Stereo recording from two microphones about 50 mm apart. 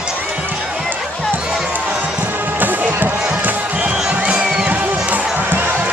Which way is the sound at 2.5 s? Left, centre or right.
Right.